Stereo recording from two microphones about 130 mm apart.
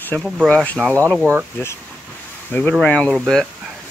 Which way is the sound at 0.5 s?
10° left (ahead or behind).